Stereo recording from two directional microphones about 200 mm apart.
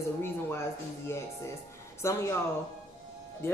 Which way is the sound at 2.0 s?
15° left (ahead or behind).